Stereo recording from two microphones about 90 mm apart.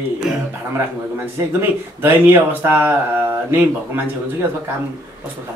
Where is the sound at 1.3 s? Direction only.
25° right (ahead or behind).